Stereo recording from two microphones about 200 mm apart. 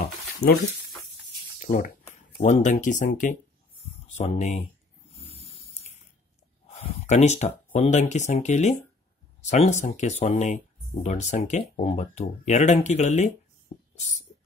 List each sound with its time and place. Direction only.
0.0 s a sound: 50° left (ahead or behind)
1.7 s speech: 35° left (ahead or behind)
7.1 s speech: 35° left (ahead or behind)